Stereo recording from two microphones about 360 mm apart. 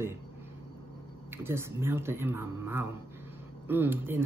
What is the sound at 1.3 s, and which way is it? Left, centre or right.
Speech, centre.